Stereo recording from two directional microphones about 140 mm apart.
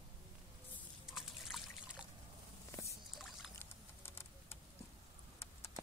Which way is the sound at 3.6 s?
15° left (ahead or behind).